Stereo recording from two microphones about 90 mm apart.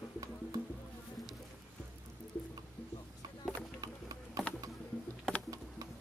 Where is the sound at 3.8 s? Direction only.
45° right (ahead or behind).